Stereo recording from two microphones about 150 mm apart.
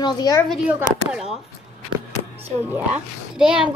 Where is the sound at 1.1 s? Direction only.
5° right (ahead or behind).